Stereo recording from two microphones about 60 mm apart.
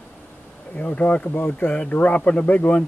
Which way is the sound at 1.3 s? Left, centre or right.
Left.